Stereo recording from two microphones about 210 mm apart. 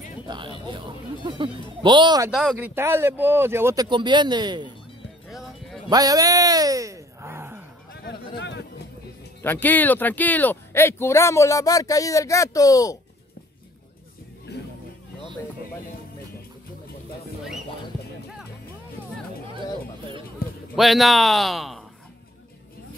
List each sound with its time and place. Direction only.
0.3 s speech: 20° right (ahead or behind)
2.3 s speech: 5° right (ahead or behind); by 4.6 s 20° right (ahead or behind)
5.9 s a sound: 15° right (ahead or behind)
7.9 s a sound: 50° left (ahead or behind)
9.4 s speech: 10° left (ahead or behind)
14.5 s music: 55° left (ahead or behind)
20.7 s speech: centre (ahead or behind)